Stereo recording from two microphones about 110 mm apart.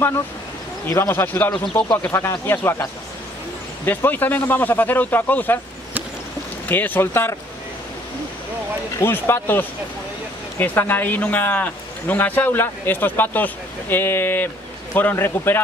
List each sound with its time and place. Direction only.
0.8 s speech: 20° left (ahead or behind)
6.7 s speech: 15° left (ahead or behind)
8.9 s speech: 20° left (ahead or behind)